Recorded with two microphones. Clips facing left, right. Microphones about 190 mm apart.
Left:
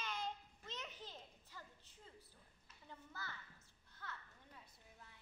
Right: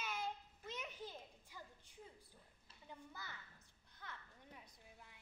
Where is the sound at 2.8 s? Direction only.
15° right (ahead or behind).